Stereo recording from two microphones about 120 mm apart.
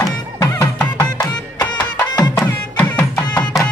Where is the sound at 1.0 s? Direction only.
30° left (ahead or behind).